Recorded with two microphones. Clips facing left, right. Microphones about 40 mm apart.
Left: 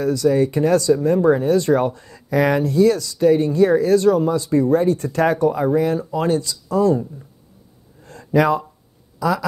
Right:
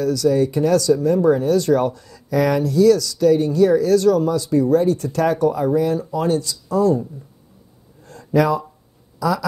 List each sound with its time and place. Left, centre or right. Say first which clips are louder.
0.0 s speech: even; left
8.0 s a sound: left 1 dB; left
9.2 s speech: even; left